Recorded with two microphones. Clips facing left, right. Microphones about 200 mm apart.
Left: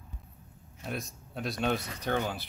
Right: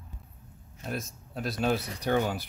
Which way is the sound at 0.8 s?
Centre (ahead or behind).